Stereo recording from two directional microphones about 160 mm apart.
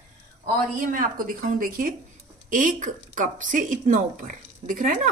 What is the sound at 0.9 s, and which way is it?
Speech, 65° right (ahead or behind).